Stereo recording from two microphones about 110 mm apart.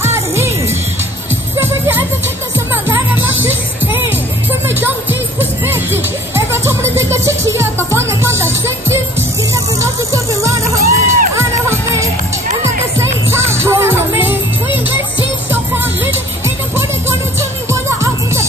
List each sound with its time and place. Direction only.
0.0 s music: 25° right (ahead or behind)
2.7 s music: 15° right (ahead or behind)
15.5 s music: 20° right (ahead or behind)